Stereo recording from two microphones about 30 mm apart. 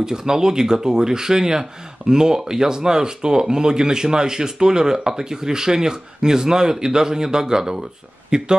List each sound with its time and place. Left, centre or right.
0.0 s speech: centre